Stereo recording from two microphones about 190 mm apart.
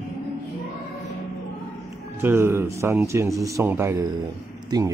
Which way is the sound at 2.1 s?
10° right (ahead or behind).